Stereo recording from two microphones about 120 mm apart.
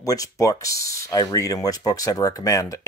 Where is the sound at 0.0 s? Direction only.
30° left (ahead or behind).